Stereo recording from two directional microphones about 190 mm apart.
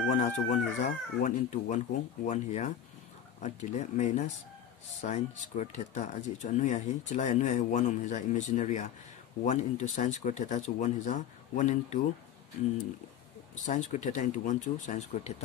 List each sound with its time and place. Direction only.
0.1 s speech: 40° left (ahead or behind)
13.7 s speech: 40° left (ahead or behind)